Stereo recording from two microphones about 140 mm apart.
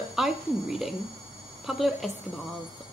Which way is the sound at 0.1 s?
5° right (ahead or behind).